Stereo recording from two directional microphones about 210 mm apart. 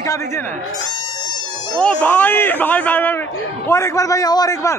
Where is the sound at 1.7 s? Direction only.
5° left (ahead or behind).